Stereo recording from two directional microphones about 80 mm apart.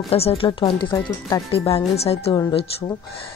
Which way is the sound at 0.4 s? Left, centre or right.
Left.